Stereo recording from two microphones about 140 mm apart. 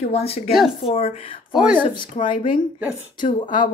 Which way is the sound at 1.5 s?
10° right (ahead or behind).